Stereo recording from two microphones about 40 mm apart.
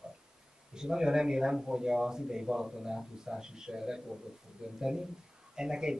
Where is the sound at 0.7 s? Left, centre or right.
Centre.